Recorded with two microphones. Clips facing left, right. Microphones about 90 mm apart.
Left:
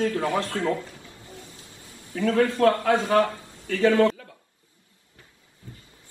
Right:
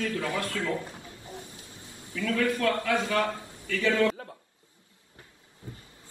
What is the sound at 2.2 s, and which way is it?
A man's voice, 30° left (ahead or behind).